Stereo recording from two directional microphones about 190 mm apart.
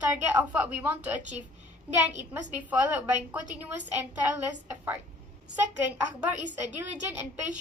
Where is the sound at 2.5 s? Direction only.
10° right (ahead or behind).